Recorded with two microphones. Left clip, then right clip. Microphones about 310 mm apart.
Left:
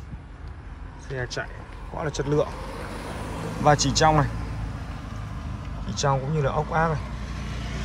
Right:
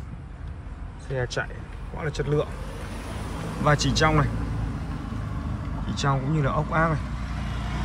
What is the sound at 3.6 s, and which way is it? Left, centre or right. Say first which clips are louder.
Speech: left 3 dB; centre.